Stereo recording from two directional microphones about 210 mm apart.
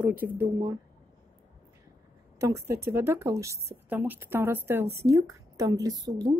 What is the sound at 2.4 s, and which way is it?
Speech, 15° right (ahead or behind).